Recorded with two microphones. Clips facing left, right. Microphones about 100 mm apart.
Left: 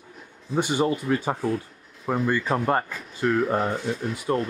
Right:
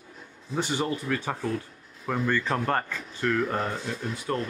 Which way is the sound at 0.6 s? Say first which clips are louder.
Left 5 dB; 15° left (ahead or behind).